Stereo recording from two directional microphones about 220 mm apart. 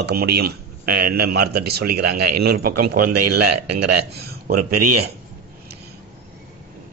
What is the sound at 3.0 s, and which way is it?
Speech, 90° right.